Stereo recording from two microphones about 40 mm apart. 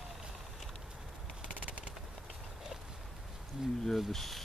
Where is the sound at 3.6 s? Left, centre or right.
Centre.